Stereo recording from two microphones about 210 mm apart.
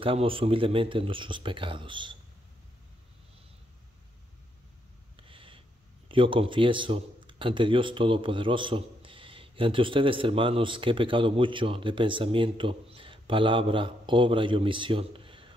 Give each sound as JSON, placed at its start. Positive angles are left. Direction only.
{"t": 0.0, "sound": "a man's voice", "side_deg": -25}
{"t": 5.1, "sound": "a sound", "side_deg": -25}
{"t": 6.0, "sound": "a man's voice", "side_deg": -25}